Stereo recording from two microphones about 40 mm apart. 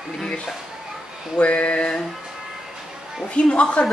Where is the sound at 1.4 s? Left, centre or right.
Left.